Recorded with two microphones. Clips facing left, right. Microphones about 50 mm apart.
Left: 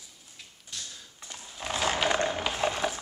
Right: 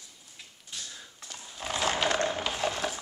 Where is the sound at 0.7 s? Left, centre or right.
Centre.